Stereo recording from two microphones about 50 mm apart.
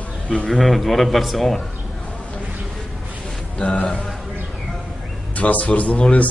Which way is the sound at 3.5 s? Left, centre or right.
Left.